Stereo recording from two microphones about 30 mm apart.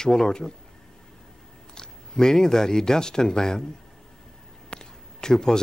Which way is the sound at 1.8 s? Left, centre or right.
Left.